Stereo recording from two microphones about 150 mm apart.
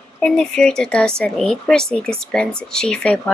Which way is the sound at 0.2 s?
5° left (ahead or behind).